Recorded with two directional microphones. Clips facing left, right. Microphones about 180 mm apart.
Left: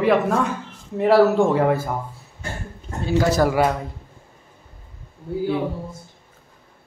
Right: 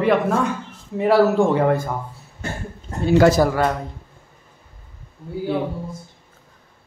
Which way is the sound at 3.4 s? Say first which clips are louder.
Left 1 dB; 5° left (ahead or behind).